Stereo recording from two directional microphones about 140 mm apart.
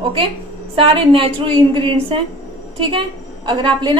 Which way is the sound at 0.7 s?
40° right (ahead or behind).